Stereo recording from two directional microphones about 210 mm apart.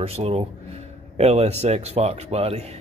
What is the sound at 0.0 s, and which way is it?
A man's voice, 30° right (ahead or behind).